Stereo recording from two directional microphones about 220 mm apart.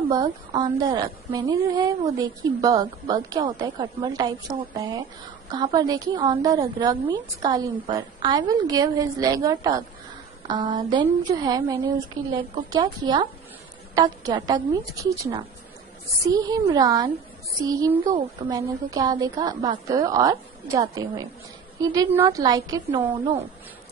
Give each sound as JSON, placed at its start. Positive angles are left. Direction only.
{"t": 0.1, "sound": "a woman's voice", "side_deg": -20}
{"t": 18.1, "sound": "a woman's voice", "side_deg": -15}